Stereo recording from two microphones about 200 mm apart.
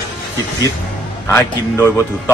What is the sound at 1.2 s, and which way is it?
Speech, 15° left (ahead or behind).